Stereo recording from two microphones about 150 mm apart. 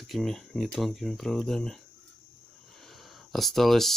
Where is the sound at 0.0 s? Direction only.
Centre (ahead or behind).